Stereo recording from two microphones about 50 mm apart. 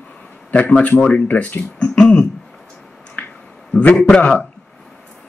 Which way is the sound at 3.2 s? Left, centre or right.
Left.